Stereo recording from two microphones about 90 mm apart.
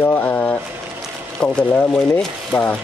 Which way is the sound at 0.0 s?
25° left (ahead or behind).